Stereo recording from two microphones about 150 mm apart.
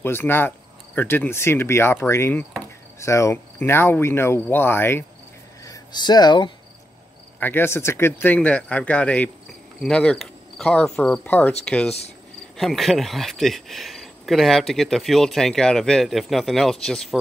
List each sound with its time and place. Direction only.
0.0 s cricket: 15° left (ahead or behind)
5.7 s speech: 30° left (ahead or behind)
7.3 s cricket: 15° left (ahead or behind)
12.5 s speech: centre (ahead or behind)